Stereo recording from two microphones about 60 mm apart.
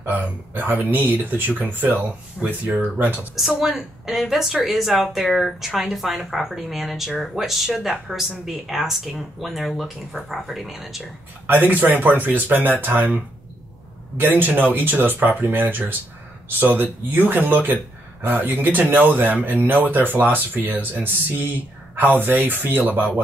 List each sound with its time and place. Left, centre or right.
0.0 s speech: right
3.3 s a woman's voice: centre
11.4 s speech: right